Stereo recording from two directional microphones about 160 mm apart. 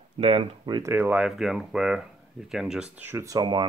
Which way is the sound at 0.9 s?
10° right (ahead or behind).